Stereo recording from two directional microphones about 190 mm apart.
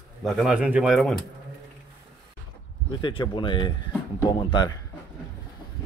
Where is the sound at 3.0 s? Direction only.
25° left (ahead or behind).